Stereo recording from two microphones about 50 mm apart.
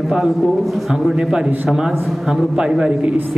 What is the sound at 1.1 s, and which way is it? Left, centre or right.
A man's voice, centre.